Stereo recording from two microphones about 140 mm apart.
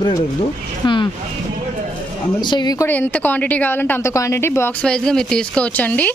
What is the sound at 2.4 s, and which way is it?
Speech, 30° left (ahead or behind).